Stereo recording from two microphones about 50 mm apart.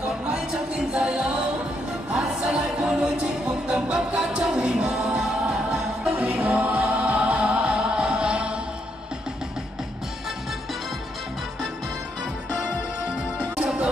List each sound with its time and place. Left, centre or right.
0.3 s music: centre
6.1 s music: right